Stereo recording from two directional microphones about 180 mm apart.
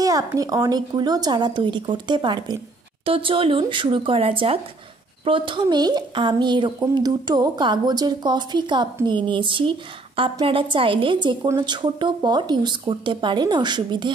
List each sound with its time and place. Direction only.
0.0 s a woman's voice: 20° right (ahead or behind)